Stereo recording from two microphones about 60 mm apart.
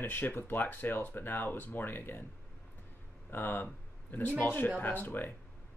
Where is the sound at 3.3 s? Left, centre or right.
Left.